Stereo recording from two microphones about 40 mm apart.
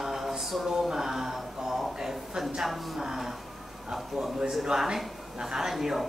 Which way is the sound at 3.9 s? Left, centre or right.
Centre.